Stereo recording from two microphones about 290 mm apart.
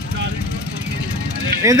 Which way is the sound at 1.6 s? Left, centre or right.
Centre.